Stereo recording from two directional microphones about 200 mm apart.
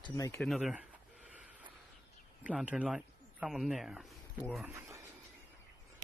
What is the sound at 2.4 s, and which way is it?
Speech, 5° right (ahead or behind).